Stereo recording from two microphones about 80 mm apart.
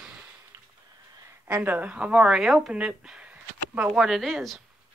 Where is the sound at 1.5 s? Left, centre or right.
Right; by 4.6 s centre.